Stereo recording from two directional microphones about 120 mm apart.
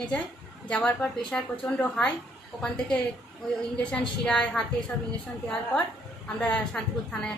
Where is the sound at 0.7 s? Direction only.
5° left (ahead or behind).